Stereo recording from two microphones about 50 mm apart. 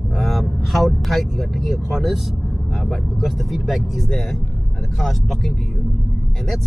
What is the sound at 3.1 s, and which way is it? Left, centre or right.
Speech, centre.